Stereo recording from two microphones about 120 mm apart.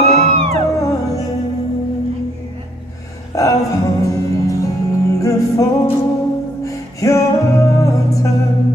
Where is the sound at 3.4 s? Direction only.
30° left (ahead or behind).